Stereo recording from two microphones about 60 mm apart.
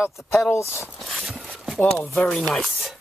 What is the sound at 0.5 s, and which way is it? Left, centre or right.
Speech, left.